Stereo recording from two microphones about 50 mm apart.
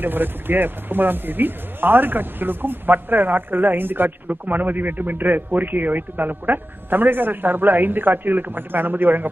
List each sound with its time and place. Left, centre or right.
0.0 s speech: right